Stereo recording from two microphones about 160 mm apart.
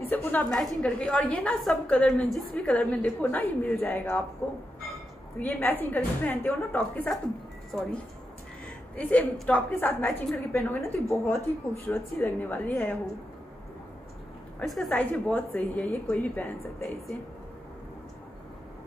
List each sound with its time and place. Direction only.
0.1 s a woman's voice: 10° left (ahead or behind)
5.4 s a woman's voice: 10° left (ahead or behind)
8.9 s a woman's voice: 10° left (ahead or behind)
14.7 s a woman's voice: 5° left (ahead or behind)